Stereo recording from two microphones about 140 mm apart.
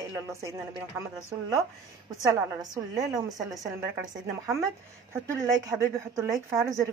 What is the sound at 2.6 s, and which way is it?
Speech, 25° right (ahead or behind).